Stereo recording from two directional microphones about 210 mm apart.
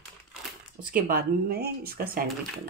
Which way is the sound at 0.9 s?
45° right (ahead or behind).